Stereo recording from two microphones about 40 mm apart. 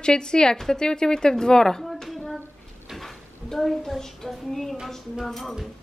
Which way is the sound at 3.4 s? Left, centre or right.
Centre.